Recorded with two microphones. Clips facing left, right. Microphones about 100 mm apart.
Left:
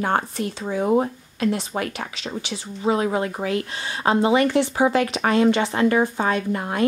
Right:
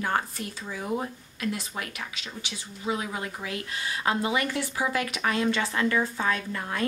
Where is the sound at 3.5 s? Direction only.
30° left (ahead or behind).